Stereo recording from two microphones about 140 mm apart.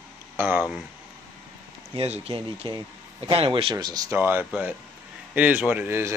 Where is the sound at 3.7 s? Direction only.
25° right (ahead or behind).